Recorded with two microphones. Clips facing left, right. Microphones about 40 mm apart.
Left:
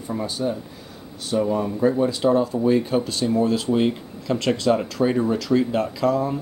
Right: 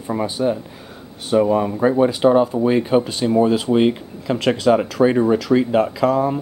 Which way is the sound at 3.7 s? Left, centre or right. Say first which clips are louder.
Right 5 dB; right.